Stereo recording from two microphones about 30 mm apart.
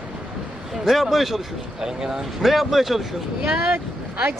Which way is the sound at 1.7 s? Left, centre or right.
Centre.